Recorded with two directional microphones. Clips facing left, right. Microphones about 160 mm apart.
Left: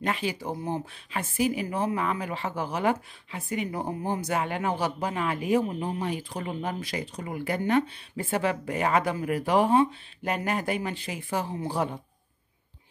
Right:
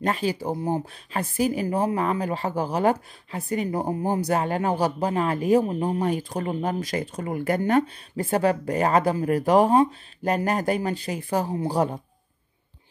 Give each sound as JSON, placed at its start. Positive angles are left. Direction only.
{"t": 0.0, "sound": "speech", "side_deg": -40}